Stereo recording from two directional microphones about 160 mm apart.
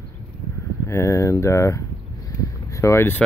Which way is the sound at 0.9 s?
15° left (ahead or behind).